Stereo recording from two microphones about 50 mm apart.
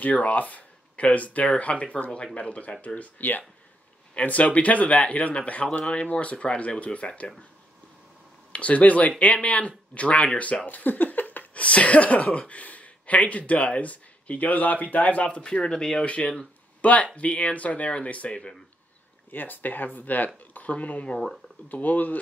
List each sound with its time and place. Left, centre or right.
0.0 s speech: left
8.5 s speech: left
19.3 s speech: left